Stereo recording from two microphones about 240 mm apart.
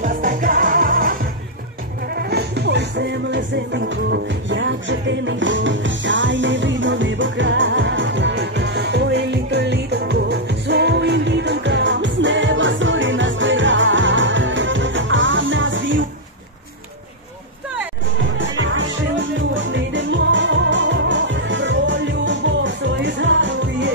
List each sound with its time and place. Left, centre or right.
0.0 s music: right
2.1 s music: right
18.4 s music: right